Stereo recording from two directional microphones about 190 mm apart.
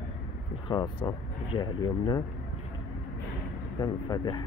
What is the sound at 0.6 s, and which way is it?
Speech, 25° left (ahead or behind).